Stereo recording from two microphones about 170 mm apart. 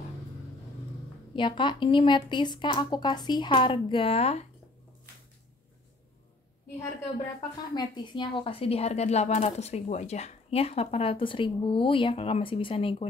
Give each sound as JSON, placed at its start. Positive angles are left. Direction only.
{"t": 1.3, "sound": "speech", "side_deg": 30}
{"t": 7.3, "sound": "a woman's voice", "side_deg": 25}